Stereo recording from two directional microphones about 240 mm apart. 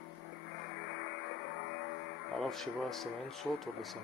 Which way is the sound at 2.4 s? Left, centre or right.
Centre.